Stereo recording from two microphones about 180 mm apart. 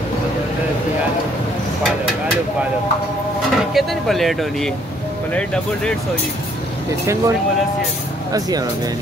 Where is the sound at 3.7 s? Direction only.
Centre (ahead or behind).